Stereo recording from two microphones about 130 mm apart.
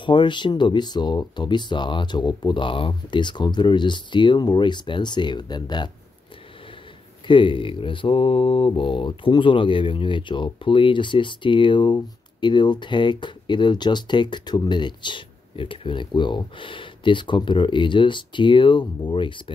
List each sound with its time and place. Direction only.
0.0 s speech: 35° left (ahead or behind)
7.2 s speech: 40° left (ahead or behind)